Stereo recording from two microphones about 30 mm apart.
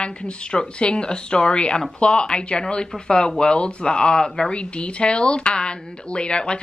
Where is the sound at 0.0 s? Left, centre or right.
Left.